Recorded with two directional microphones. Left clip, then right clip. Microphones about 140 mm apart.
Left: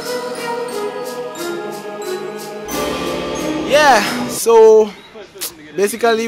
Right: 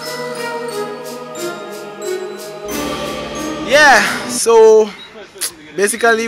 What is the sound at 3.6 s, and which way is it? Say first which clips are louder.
Speech: right 2 dB; 15° left (ahead or behind).